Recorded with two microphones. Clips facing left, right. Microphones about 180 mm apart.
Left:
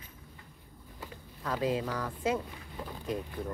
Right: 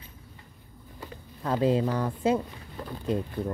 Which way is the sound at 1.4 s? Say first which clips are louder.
Right 7 dB; 30° right (ahead or behind).